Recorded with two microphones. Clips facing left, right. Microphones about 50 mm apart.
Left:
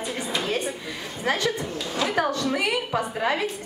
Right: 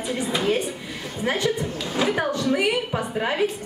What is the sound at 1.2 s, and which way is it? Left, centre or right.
A woman's voice, centre.